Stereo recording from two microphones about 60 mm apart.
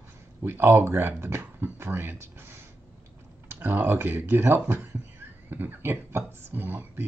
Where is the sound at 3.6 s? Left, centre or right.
Right.